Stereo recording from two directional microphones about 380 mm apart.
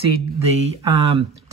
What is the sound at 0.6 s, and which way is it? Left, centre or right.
Speech, centre.